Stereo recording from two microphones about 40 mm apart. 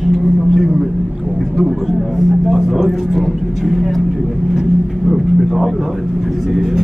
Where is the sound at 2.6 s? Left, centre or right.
Centre.